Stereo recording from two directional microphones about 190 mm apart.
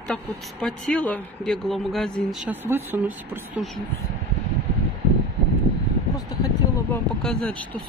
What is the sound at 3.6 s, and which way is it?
Speech, 50° left (ahead or behind).